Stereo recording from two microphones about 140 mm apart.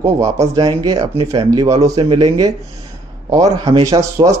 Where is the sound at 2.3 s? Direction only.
25° right (ahead or behind).